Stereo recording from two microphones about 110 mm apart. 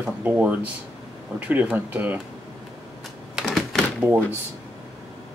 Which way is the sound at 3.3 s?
Centre (ahead or behind).